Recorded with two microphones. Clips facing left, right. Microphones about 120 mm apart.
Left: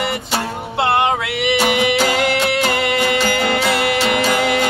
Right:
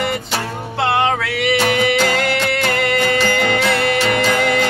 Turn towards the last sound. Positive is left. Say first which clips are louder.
# even
turn(degrees=10)  # may be behind; listen again after turning